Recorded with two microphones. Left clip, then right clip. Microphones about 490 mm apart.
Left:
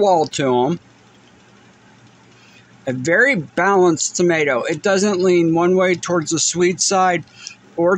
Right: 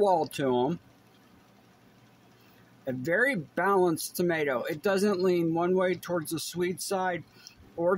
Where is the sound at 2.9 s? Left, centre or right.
Right.